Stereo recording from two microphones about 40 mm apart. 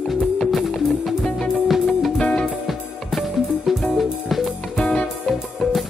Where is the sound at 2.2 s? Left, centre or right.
Left.